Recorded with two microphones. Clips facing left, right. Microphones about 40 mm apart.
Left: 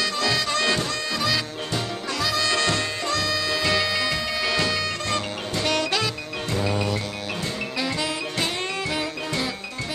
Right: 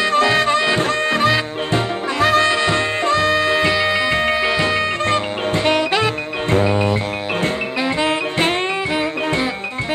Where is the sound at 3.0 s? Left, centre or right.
Right.